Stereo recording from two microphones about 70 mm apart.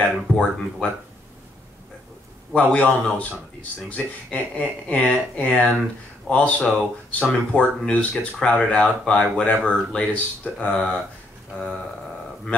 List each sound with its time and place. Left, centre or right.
0.0 s speech: centre
2.6 s speech: left